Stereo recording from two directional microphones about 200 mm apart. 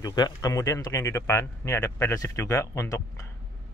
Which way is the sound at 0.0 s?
20° left (ahead or behind).